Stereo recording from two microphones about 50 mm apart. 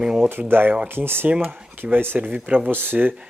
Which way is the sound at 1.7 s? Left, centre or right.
Right.